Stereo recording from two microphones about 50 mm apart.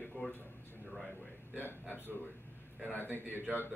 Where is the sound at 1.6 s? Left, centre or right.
Left.